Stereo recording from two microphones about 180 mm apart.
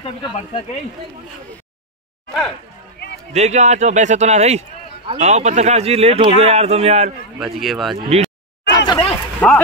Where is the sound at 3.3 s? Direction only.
40° right (ahead or behind).